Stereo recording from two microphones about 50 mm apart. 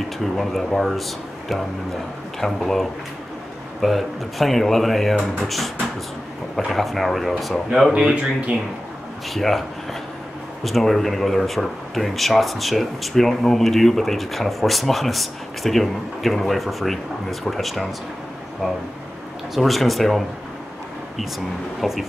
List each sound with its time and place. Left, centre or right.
0.2 s speech: centre
2.4 s speech: centre
8.1 s speech: right
9.3 s speech: centre
19.5 s speech: centre
21.8 s speech: centre